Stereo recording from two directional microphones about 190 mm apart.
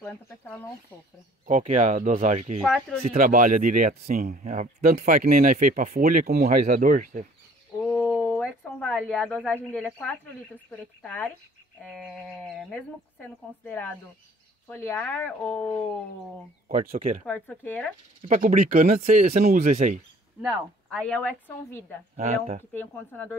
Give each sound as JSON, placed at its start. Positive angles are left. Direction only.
{"t": 0.0, "sound": "speech", "side_deg": 10}
{"t": 1.4, "sound": "speech", "side_deg": -45}
{"t": 2.6, "sound": "speech", "side_deg": 0}
{"t": 3.2, "sound": "speech", "side_deg": -45}
{"t": 8.2, "sound": "speech", "side_deg": 10}
{"t": 16.9, "sound": "speech", "side_deg": -30}
{"t": 17.3, "sound": "speech", "side_deg": 10}
{"t": 18.2, "sound": "speech", "side_deg": -40}
{"t": 20.9, "sound": "speech", "side_deg": 5}
{"t": 22.1, "sound": "speech", "side_deg": -40}
{"t": 22.7, "sound": "speech", "side_deg": 10}